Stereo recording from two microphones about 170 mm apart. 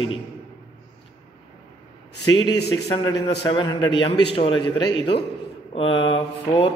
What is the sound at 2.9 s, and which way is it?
Speech, 25° left (ahead or behind).